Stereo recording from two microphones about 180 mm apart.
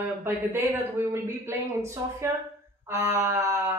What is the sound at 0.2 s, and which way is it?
Speech, 15° right (ahead or behind).